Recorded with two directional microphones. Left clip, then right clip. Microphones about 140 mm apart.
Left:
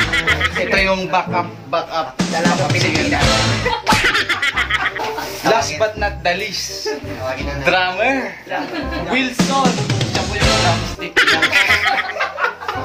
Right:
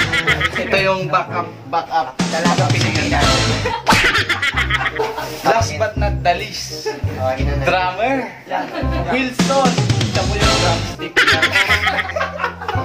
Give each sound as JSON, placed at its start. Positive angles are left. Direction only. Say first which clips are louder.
{"t": 0.0, "sound": "music", "louder": "even", "side_deg": 0}
{"t": 5.6, "sound": "music", "louder": "left 1 dB", "side_deg": 15}
{"t": 7.6, "sound": "music", "louder": "left 2 dB", "side_deg": 10}